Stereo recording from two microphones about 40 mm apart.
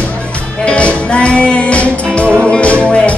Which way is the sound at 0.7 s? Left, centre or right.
Left.